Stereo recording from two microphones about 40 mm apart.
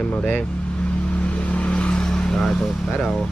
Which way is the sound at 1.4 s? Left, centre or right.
Left.